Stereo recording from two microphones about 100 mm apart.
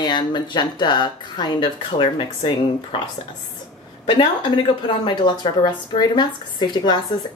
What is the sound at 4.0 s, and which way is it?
A woman's voice, 60° left (ahead or behind).